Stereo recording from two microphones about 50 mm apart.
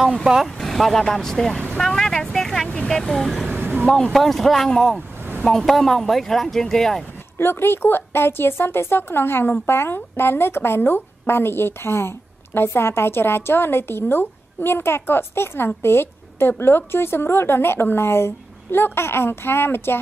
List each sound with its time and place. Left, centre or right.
0.0 s speech: centre
1.8 s vehicle: centre
2.9 s speech: centre
3.4 s a sound: right
3.8 s speech: centre
4.1 s speech: centre
7.3 s a woman's voice: left